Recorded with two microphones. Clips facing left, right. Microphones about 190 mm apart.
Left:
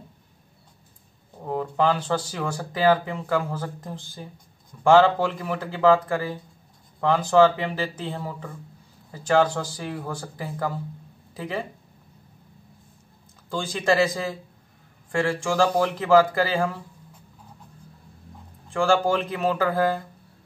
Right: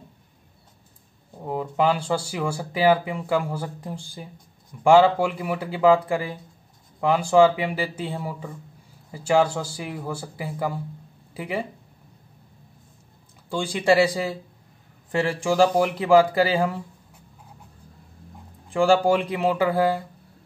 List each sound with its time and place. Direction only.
1.4 s speech: 10° right (ahead or behind)
13.5 s speech: 15° right (ahead or behind)
18.7 s speech: 15° right (ahead or behind)